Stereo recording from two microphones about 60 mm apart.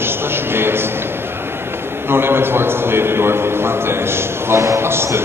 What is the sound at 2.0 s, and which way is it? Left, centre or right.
A man's voice, right.